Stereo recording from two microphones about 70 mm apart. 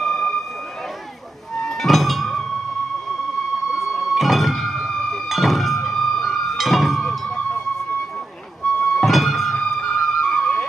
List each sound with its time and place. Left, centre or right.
0.0 s a sound: centre
1.6 s music: centre
3.7 s music: centre
7.3 s music: centre
8.7 s music: centre